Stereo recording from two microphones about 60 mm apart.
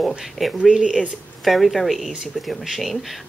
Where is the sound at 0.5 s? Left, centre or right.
Centre.